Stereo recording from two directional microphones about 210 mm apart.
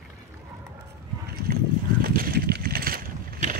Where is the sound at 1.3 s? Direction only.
45° right (ahead or behind).